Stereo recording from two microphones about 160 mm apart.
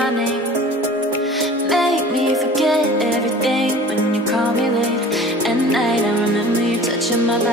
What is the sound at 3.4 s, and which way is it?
Music, centre (ahead or behind).